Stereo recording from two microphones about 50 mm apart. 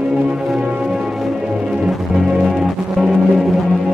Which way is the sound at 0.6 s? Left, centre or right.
Centre.